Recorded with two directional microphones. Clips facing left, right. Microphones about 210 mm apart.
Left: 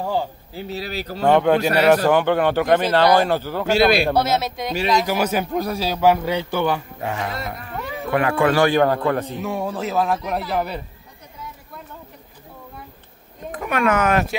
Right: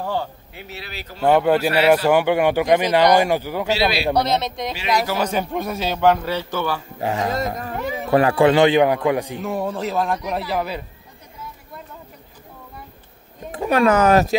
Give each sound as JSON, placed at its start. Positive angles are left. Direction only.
{"t": 0.0, "sound": "a man's voice", "side_deg": 10}
{"t": 0.5, "sound": "a man's voice", "side_deg": 35}
{"t": 1.2, "sound": "a man's voice", "side_deg": -5}
{"t": 3.6, "sound": "a man's voice", "side_deg": 50}
{"t": 4.1, "sound": "a man's voice", "side_deg": 5}
{"t": 7.0, "sound": "speech", "side_deg": -30}
{"t": 9.4, "sound": "a man's voice", "side_deg": 0}
{"t": 13.5, "sound": "speech", "side_deg": -30}